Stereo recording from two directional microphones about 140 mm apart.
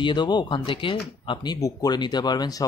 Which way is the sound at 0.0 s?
35° left (ahead or behind).